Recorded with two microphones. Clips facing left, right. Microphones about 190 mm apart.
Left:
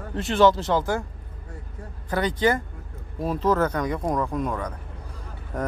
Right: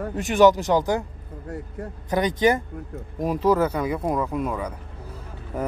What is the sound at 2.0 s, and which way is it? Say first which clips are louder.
Speech: right 2 dB; 20° right (ahead or behind).